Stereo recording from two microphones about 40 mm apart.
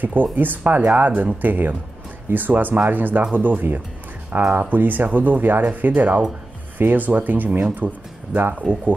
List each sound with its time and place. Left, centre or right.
0.0 s speech: right
8.5 s speech: right